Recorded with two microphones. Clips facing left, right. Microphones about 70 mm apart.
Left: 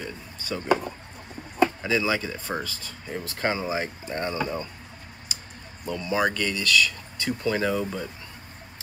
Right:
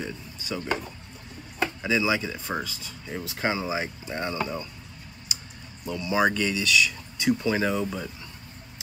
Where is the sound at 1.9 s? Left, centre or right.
Centre.